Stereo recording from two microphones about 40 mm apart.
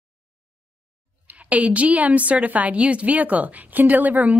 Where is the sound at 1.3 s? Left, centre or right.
Right.